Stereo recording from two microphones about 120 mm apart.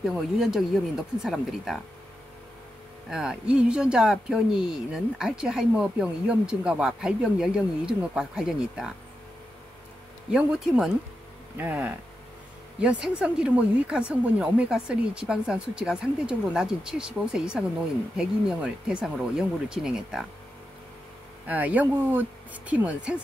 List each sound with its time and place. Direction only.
0.0 s speech: 5° right (ahead or behind)
3.1 s speech: 5° right (ahead or behind)
10.3 s speech: 5° right (ahead or behind)
21.5 s speech: 15° right (ahead or behind)